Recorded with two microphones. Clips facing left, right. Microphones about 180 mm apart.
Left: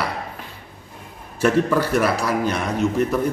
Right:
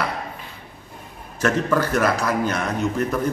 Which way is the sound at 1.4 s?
10° left (ahead or behind).